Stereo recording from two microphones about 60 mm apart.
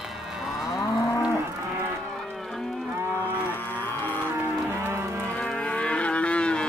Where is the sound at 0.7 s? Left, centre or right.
Left.